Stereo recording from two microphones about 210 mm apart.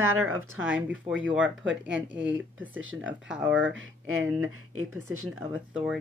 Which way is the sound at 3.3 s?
5° right (ahead or behind).